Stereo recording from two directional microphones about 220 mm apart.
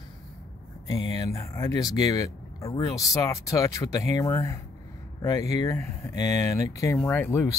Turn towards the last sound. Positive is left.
turn(degrees=10)  # may be behind; listen again after turning